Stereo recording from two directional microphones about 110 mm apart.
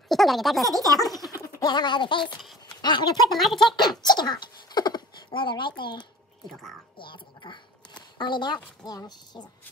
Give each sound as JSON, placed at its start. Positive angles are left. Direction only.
{"t": 0.1, "sound": "speech", "side_deg": 0}
{"t": 1.4, "sound": "speech", "side_deg": 35}
{"t": 3.3, "sound": "speech", "side_deg": 0}
{"t": 3.7, "sound": "speech", "side_deg": 40}
{"t": 7.0, "sound": "a sound", "side_deg": 45}
{"t": 8.8, "sound": "speech", "side_deg": 40}